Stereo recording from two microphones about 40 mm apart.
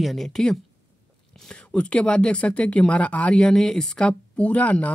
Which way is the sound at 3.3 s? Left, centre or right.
Left.